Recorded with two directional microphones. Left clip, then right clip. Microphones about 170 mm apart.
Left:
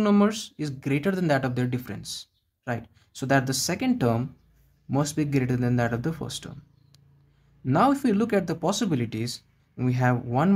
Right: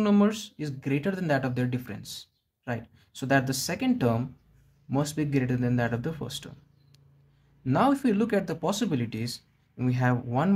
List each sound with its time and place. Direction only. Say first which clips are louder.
0.0 s speech: left 2 dB; 25° left (ahead or behind)